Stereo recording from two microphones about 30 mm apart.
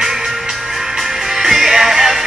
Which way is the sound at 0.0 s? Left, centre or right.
Centre.